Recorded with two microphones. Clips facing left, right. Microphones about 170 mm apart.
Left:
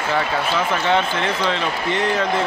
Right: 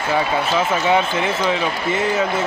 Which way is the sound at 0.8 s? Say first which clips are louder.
Right 2 dB; 10° right (ahead or behind).